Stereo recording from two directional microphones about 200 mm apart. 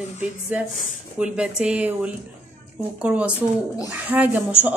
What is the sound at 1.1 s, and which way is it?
A woman's voice, 5° right (ahead or behind).